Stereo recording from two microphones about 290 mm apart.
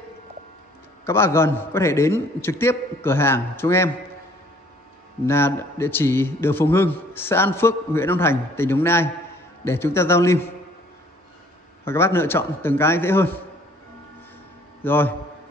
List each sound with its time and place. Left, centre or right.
1.0 s a man's voice: centre
5.2 s a man's voice: centre
11.8 s a man's voice: centre
14.8 s a man's voice: centre